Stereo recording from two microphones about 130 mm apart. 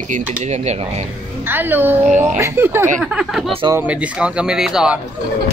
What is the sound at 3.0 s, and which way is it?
Speech, 5° right (ahead or behind).